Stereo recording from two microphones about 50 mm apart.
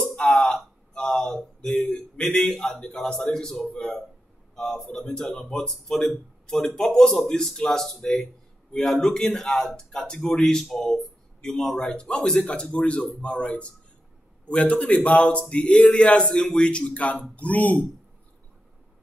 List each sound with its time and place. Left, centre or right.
0.2 s a sound: centre
2.2 s speech: centre
2.8 s a man's voice: left
3.1 s speech: centre
10.0 s a man's voice: centre; by 17.8 s left